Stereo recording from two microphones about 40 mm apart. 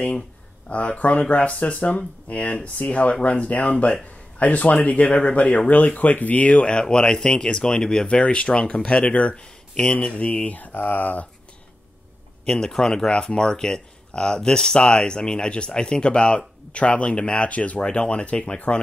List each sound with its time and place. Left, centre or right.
0.7 s speech: left
6.7 s speech: left
10.7 s speech: left
12.4 s speech: centre